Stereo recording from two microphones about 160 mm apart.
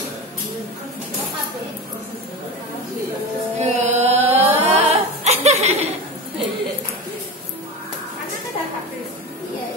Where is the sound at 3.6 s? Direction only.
45° right (ahead or behind).